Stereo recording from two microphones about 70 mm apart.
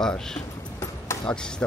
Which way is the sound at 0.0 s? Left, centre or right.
Centre.